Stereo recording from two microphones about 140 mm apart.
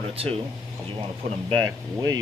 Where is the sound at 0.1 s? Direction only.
45° right (ahead or behind).